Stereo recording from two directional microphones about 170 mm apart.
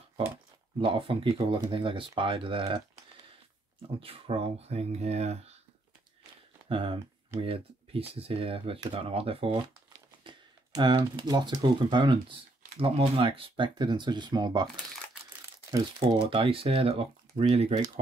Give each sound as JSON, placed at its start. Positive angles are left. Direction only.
{"t": 0.7, "sound": "speech", "side_deg": -30}
{"t": 4.0, "sound": "speech", "side_deg": -35}
{"t": 6.7, "sound": "speech", "side_deg": -30}
{"t": 15.7, "sound": "speech", "side_deg": -25}